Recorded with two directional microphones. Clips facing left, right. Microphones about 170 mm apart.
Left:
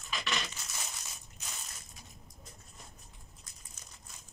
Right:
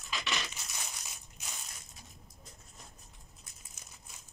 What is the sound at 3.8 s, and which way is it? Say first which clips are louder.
Crumpling: even; 10° right (ahead or behind).